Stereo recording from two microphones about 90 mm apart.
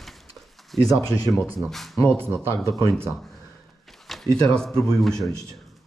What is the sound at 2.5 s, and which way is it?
Speech, 35° left (ahead or behind).